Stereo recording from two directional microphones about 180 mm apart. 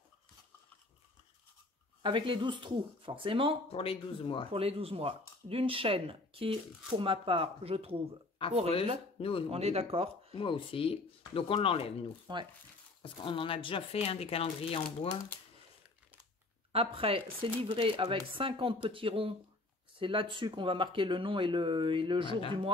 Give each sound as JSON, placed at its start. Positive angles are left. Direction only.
{"t": 2.0, "sound": "speech", "side_deg": -25}
{"t": 3.6, "sound": "speech", "side_deg": 30}
{"t": 4.5, "sound": "speech", "side_deg": -35}
{"t": 8.4, "sound": "speech", "side_deg": 30}
{"t": 9.5, "sound": "speech", "side_deg": -35}
{"t": 10.3, "sound": "speech", "side_deg": 30}
{"t": 12.3, "sound": "speech", "side_deg": -25}
{"t": 13.0, "sound": "speech", "side_deg": 30}
{"t": 16.7, "sound": "speech", "side_deg": -30}